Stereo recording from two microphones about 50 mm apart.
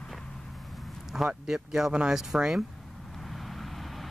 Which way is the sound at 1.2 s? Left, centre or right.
Centre.